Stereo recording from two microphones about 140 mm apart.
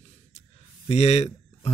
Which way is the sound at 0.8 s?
45° left (ahead or behind).